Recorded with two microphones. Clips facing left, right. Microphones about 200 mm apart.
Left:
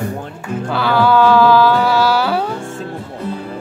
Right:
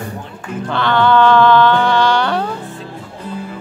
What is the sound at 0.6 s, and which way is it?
Music, 5° left (ahead or behind).